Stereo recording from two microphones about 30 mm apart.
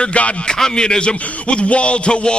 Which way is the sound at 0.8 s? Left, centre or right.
Left.